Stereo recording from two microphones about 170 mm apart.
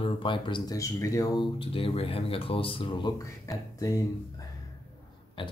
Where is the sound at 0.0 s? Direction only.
30° left (ahead or behind).